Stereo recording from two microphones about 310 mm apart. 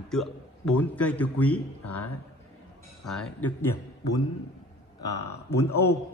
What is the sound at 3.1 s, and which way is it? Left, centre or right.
Speech, centre.